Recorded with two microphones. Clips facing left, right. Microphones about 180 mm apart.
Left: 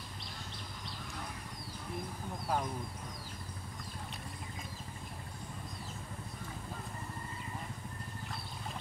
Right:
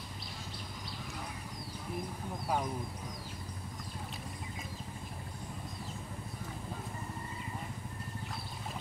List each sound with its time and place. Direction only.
2.4 s speech: centre (ahead or behind)